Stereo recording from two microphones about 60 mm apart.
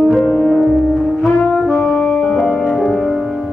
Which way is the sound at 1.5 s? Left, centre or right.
Left.